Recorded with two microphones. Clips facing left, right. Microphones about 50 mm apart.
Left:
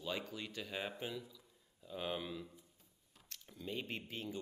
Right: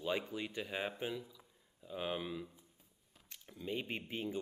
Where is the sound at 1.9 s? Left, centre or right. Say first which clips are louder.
Right 2 dB; centre.